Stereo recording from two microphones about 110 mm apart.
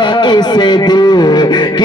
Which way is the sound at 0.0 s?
45° left (ahead or behind).